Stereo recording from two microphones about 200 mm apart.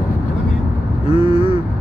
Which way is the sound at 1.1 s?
25° left (ahead or behind).